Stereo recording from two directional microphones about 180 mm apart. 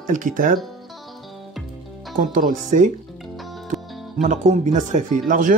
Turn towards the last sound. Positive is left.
turn(degrees=-50)  # may be behind; listen again after turning